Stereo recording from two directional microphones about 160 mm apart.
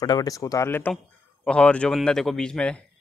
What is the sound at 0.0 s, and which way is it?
A man's voice, 25° left (ahead or behind).